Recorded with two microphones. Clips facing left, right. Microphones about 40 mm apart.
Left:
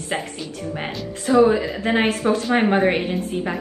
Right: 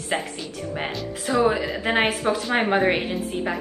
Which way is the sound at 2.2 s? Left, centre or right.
Centre.